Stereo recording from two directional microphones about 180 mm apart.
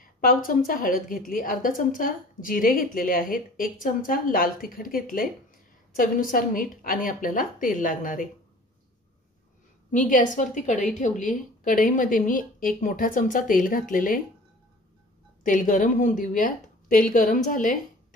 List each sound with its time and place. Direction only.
0.0 s a woman's voice: 50° left (ahead or behind)
9.8 s a woman's voice: 45° left (ahead or behind)
15.4 s a woman's voice: 45° left (ahead or behind)